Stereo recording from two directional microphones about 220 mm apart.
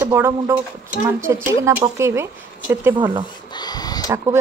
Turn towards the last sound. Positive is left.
turn(degrees=-15)  # may be behind; listen again after turning